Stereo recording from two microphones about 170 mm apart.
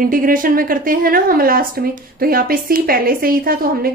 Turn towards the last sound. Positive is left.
turn(degrees=-60)  # may be behind; listen again after turning